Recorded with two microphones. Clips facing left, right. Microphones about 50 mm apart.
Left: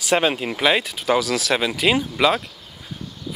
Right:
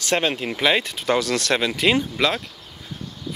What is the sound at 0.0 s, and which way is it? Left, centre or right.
Speech, centre.